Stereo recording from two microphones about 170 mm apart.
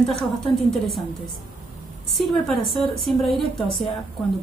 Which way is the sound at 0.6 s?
Centre (ahead or behind).